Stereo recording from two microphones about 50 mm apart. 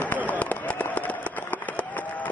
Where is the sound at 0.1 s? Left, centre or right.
Left.